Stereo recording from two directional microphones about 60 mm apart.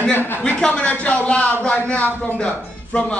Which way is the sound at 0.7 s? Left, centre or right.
Left.